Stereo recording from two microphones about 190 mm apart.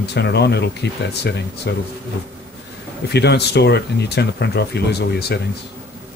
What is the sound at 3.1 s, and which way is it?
Speech, 60° left (ahead or behind).